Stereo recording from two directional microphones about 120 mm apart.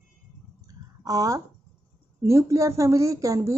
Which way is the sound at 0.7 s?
30° right (ahead or behind).